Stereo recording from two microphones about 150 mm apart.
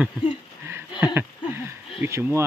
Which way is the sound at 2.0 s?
15° right (ahead or behind).